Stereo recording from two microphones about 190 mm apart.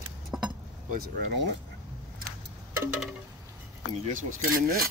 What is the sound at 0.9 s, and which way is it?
Speech, 55° right (ahead or behind).